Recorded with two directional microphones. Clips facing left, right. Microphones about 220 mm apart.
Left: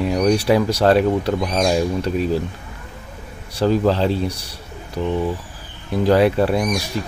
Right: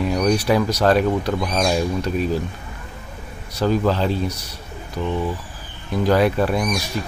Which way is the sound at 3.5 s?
30° left (ahead or behind).